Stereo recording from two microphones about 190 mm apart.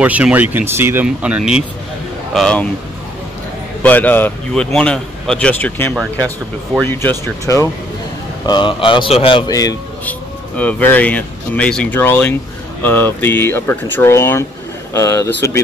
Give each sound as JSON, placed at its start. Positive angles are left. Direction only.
{"t": 0.0, "sound": "speech", "side_deg": -10}
{"t": 3.8, "sound": "speech", "side_deg": 10}
{"t": 8.5, "sound": "speech", "side_deg": 25}
{"t": 10.0, "sound": "speech", "side_deg": 10}